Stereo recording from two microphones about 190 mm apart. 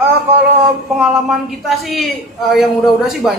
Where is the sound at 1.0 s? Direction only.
Centre (ahead or behind).